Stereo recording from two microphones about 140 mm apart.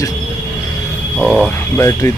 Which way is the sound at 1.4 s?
20° left (ahead or behind).